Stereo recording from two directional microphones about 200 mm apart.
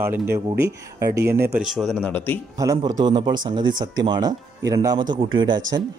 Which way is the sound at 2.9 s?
20° right (ahead or behind).